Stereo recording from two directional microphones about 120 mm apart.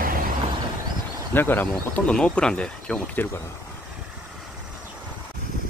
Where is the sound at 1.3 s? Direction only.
15° left (ahead or behind).